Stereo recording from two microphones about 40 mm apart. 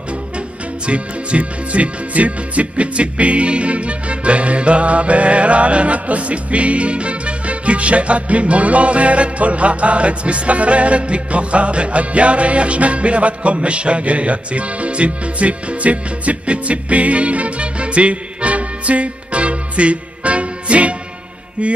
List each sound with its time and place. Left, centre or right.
0.8 s music: right